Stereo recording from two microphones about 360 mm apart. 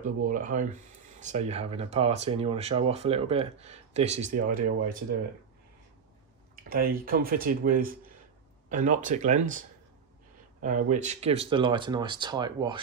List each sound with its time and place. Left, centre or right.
0.0 s speech: right
6.5 s speech: right
10.6 s speech: right